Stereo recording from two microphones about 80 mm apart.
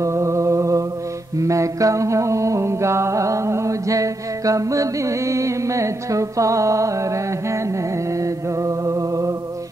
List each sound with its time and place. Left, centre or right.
0.0 s a sound: right
1.4 s mantra: right
8.2 s music: right